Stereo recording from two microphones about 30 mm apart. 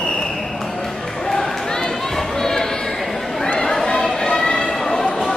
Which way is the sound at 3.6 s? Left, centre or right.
Centre.